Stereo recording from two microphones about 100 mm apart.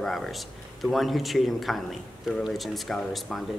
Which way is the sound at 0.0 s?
5° left (ahead or behind).